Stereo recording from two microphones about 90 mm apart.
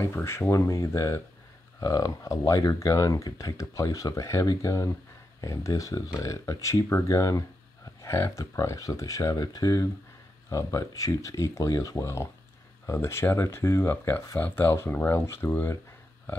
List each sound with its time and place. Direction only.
0.0 s speech: 30° left (ahead or behind)